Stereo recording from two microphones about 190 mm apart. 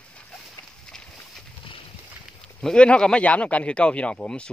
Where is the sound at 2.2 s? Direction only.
5° left (ahead or behind).